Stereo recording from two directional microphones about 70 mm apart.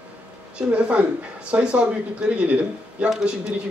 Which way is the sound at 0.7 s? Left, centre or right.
Centre.